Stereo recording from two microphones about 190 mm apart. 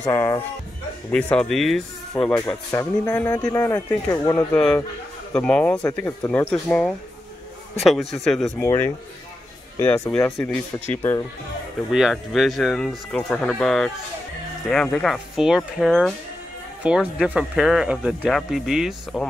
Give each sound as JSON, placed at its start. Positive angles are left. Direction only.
{"t": 0.0, "sound": "speech", "side_deg": 15}
{"t": 1.1, "sound": "speech", "side_deg": 5}
{"t": 2.3, "sound": "speech", "side_deg": 15}
{"t": 8.5, "sound": "speech", "side_deg": 10}
{"t": 11.9, "sound": "speech", "side_deg": 0}